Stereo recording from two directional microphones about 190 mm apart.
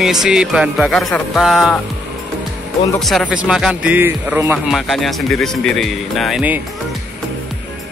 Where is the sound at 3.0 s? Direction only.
Centre (ahead or behind).